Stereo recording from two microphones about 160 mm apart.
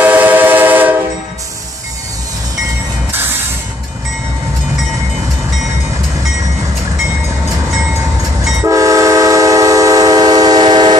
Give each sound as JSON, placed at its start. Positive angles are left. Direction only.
{"t": 0.0, "sound": "train", "side_deg": -10}
{"t": 3.1, "sound": "train", "side_deg": -10}
{"t": 8.6, "sound": "train", "side_deg": -20}